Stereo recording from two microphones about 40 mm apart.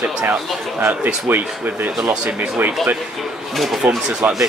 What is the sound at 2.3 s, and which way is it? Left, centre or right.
Speech, right.